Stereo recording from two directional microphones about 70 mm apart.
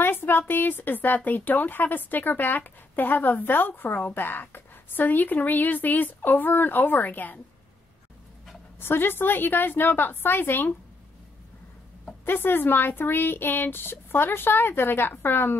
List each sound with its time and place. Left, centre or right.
0.0 s speech: left
8.7 s speech: left
12.3 s speech: left